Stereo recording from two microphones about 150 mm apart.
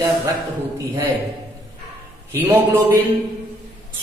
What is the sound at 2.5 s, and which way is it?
Speech, 15° right (ahead or behind).